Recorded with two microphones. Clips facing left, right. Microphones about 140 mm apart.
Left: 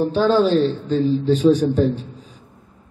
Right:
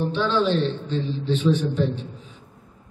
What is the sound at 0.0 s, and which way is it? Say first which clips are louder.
A man's voice: left 6 dB; 40° left (ahead or behind).